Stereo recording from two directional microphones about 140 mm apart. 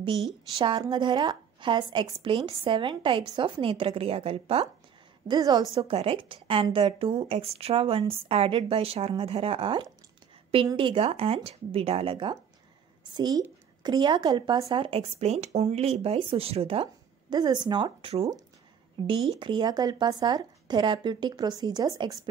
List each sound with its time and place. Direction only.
0.6 s a woman's voice: 35° right (ahead or behind)
5.3 s a woman's voice: 30° right (ahead or behind)
5.7 s a woman's voice: 40° right (ahead or behind)
13.1 s a woman's voice: 30° right (ahead or behind)